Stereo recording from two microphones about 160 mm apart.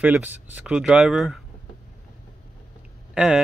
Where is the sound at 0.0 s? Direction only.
10° right (ahead or behind).